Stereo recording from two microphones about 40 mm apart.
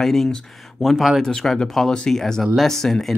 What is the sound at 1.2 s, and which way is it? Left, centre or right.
Speech, centre.